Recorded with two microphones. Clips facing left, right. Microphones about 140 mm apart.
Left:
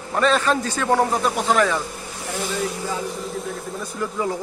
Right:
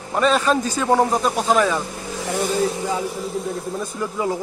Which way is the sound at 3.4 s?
25° right (ahead or behind).